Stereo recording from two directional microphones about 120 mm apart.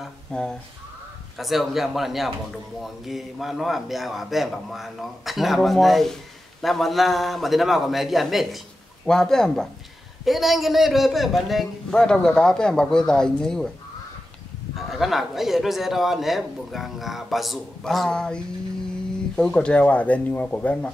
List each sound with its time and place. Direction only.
0.0 s a man's voice: 5° left (ahead or behind)
14.8 s a man's voice: centre (ahead or behind)